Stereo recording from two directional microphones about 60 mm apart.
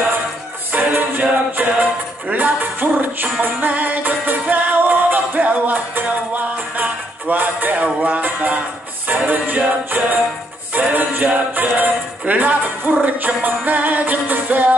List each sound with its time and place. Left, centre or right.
0.7 s music: right